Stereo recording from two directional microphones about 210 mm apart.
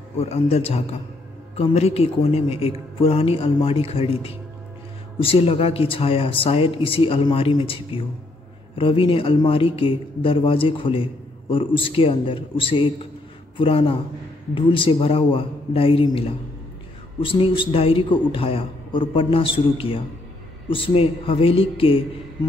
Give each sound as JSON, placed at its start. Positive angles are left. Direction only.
{"t": 0.2, "sound": "speech", "side_deg": 30}